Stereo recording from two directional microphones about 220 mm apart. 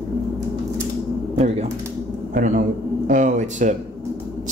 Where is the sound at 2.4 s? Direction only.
35° right (ahead or behind).